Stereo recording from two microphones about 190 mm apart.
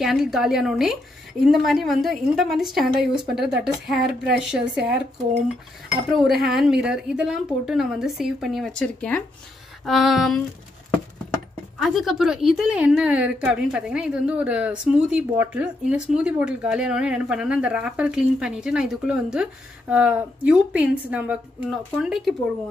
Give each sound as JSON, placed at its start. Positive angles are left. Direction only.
{"t": 0.0, "sound": "a woman's voice", "side_deg": 0}
{"t": 6.1, "sound": "a woman's voice", "side_deg": 0}
{"t": 11.8, "sound": "a woman's voice", "side_deg": 0}